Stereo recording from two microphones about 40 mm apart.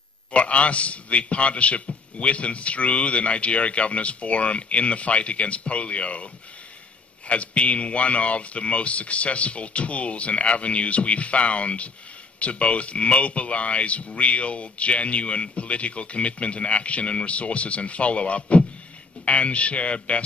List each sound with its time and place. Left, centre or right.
0.3 s speech: left